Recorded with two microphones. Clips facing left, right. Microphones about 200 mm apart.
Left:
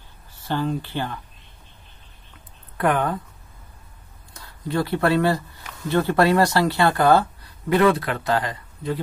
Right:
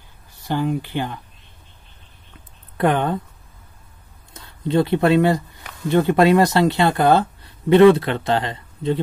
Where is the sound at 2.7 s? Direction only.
25° right (ahead or behind).